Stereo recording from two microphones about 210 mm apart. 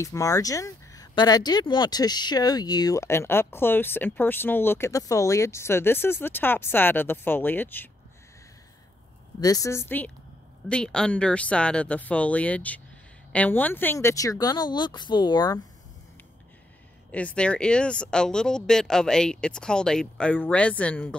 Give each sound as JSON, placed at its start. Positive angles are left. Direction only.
{"t": 0.0, "sound": "speech", "side_deg": 15}
{"t": 9.4, "sound": "speech", "side_deg": 15}
{"t": 17.1, "sound": "speech", "side_deg": 5}